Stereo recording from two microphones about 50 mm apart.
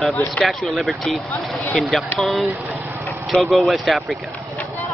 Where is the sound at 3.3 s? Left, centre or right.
Centre.